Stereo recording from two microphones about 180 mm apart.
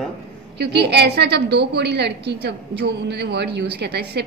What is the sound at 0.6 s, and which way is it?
A woman's voice, 65° right (ahead or behind).